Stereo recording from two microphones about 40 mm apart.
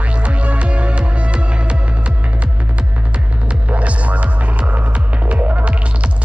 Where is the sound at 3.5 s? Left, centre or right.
Right.